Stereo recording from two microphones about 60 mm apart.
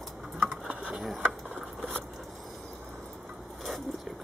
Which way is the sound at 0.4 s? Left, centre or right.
Centre.